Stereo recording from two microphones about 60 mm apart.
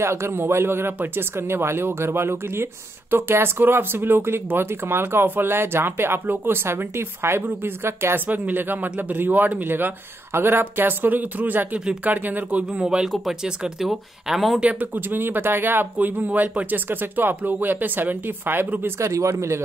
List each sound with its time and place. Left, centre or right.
0.0 s speech: right; by 13.1 s centre
13.7 s speech: centre
14.6 s speech: right
18.9 s speech: right